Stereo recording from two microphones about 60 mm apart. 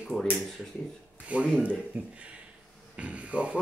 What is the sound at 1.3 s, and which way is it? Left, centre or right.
Speech, right.